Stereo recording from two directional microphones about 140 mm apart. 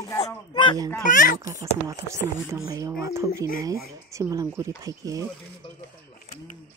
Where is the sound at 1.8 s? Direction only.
20° right (ahead or behind).